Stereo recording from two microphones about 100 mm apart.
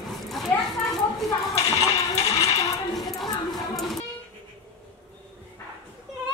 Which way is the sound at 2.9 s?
Centre (ahead or behind).